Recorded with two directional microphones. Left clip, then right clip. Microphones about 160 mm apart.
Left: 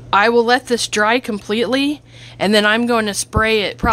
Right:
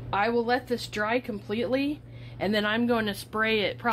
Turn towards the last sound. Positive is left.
turn(degrees=45)  # may be behind; listen again after turning